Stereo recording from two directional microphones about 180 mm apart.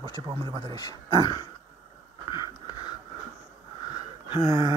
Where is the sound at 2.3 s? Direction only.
25° left (ahead or behind).